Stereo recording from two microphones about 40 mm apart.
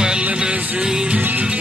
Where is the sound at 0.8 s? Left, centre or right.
Centre.